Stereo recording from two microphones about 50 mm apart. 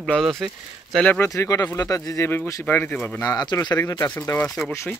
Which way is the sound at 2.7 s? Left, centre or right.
Left.